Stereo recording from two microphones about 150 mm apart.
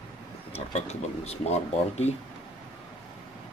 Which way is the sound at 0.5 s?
45° left (ahead or behind).